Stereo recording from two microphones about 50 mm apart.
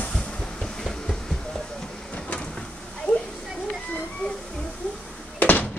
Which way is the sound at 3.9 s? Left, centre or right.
Left.